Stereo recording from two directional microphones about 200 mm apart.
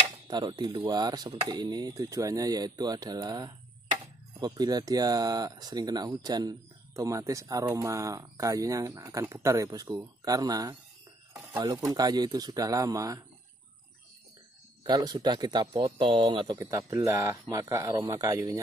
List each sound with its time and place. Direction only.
0.3 s speech: 20° right (ahead or behind)
14.8 s speech: 20° right (ahead or behind)